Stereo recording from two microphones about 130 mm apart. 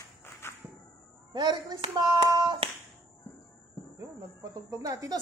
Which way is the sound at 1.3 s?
30° right (ahead or behind).